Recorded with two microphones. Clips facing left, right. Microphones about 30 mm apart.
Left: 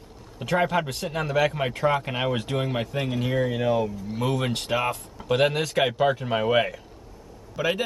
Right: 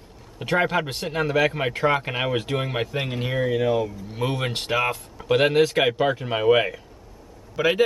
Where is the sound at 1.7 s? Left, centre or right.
Right.